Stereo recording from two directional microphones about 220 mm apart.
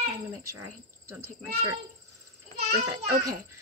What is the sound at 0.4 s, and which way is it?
Speech, 90° right.